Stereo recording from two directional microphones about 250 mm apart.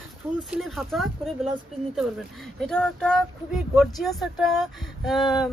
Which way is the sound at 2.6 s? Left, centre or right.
Centre.